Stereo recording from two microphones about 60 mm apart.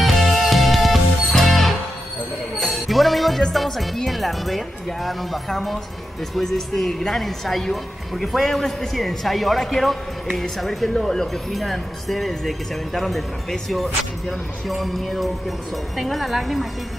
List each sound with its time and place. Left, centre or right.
0.0 s music: centre
3.5 s speech: centre